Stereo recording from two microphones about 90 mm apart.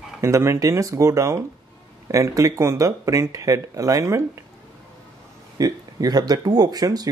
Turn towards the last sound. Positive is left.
turn(degrees=-45)  # may be behind; listen again after turning